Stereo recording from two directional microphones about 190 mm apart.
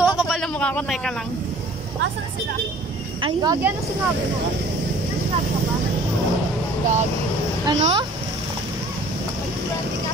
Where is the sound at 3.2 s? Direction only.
20° right (ahead or behind).